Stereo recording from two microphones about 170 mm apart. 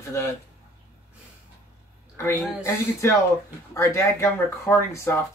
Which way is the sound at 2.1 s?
15° left (ahead or behind).